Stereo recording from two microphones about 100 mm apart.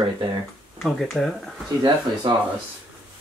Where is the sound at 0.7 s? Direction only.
5° left (ahead or behind).